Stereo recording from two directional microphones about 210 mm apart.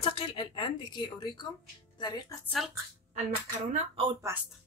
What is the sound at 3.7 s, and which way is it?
Speech, 25° right (ahead or behind).